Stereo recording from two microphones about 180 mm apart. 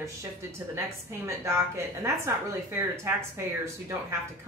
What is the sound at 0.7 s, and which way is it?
Speech, 15° right (ahead or behind).